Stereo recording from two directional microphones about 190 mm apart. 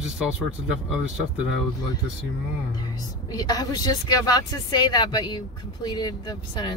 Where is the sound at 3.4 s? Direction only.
20° left (ahead or behind).